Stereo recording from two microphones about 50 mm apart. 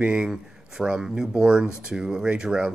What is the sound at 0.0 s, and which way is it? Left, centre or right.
Speech, centre.